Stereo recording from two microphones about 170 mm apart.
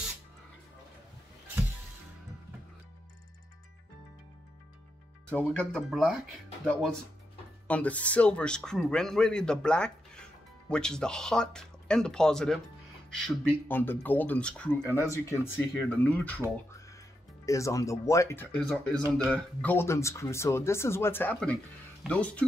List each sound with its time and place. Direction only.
5.3 s speech: 10° left (ahead or behind)
17.5 s speech: 20° left (ahead or behind)